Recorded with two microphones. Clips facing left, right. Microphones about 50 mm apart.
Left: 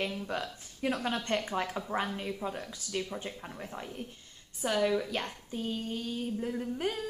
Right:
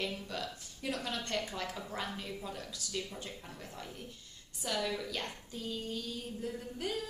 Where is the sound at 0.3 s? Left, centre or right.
Left.